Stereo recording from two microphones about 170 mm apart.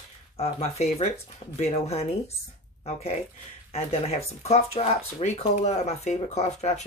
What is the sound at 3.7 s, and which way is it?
Speech, 35° left (ahead or behind).